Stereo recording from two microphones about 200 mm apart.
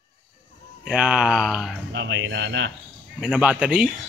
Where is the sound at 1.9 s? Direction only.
65° right (ahead or behind).